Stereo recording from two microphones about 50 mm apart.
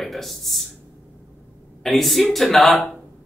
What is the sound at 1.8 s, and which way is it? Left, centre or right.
Speech, centre.